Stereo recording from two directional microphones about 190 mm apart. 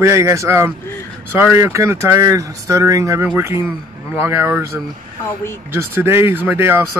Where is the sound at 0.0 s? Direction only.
15° right (ahead or behind).